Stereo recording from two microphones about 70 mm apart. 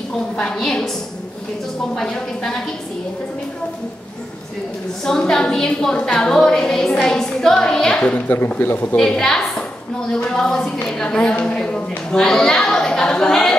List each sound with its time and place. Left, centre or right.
0.4 s a woman's voice: centre
2.0 s a woman's voice: centre
5.0 s a woman's voice: centre
8.5 s speech: left
8.9 s a woman's voice: centre